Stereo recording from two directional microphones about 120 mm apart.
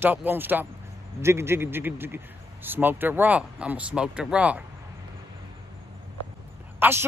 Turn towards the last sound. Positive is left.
turn(degrees=-20)  # may be behind; listen again after turning